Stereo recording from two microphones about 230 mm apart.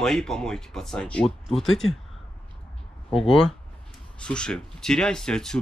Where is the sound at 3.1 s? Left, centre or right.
Centre.